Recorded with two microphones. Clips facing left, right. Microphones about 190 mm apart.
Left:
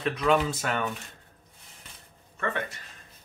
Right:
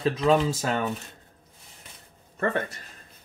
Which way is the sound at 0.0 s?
30° right (ahead or behind).